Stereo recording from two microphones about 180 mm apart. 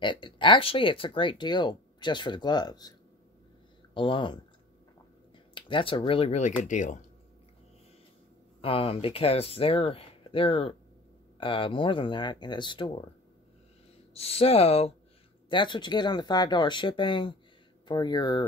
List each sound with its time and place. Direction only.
0.0 s speech: 25° left (ahead or behind)
3.9 s speech: 25° left (ahead or behind)
5.5 s speech: 30° left (ahead or behind); by 7.1 s 45° left (ahead or behind)
8.5 s speech: 30° left (ahead or behind)
14.1 s speech: 35° left (ahead or behind)